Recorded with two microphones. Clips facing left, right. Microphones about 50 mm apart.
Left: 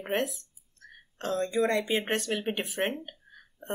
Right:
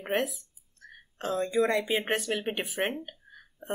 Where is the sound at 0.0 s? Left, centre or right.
Centre.